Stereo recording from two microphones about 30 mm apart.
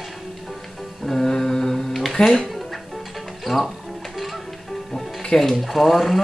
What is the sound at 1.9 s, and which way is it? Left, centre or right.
Music, centre.